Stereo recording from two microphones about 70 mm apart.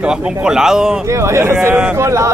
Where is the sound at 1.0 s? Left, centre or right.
Right.